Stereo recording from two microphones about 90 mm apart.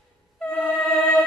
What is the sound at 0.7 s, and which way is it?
Music, centre (ahead or behind).